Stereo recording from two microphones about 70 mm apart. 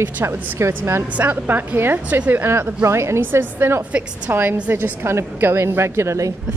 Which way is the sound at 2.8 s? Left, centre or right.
Right.